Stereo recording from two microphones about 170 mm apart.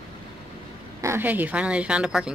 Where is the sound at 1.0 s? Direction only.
15° right (ahead or behind).